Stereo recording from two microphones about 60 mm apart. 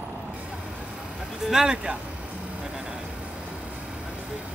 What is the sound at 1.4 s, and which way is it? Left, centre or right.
Speech, centre.